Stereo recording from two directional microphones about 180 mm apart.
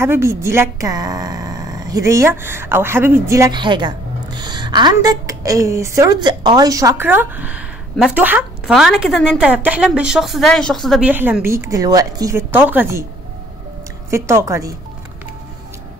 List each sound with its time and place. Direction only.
0.0 s a woman's voice: 15° right (ahead or behind); by 11.1 s centre (ahead or behind)
11.1 s a woman's voice: 10° right (ahead or behind)
14.1 s a woman's voice: 15° right (ahead or behind)